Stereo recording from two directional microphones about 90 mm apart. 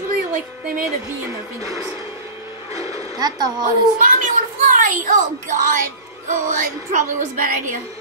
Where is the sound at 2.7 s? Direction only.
40° right (ahead or behind).